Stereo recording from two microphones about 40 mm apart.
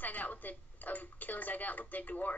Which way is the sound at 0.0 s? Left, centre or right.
Left.